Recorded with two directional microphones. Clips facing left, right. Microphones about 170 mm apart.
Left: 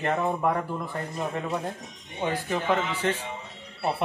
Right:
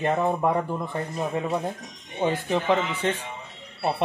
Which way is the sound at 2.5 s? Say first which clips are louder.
Right 1 dB; 20° right (ahead or behind).